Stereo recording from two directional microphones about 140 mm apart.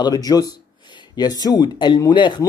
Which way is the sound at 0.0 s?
25° left (ahead or behind).